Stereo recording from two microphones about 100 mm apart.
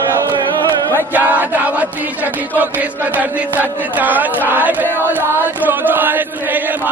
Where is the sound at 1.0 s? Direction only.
15° right (ahead or behind).